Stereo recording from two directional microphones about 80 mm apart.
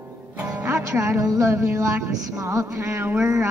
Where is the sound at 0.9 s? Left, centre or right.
Right.